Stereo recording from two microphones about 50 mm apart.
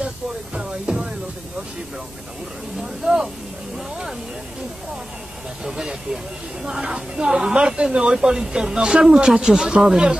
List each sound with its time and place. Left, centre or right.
0.6 s music: right
2.8 s vehicle: centre
5.6 s speech: centre